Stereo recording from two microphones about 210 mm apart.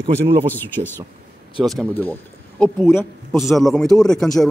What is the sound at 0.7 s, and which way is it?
A man's voice, 10° left (ahead or behind).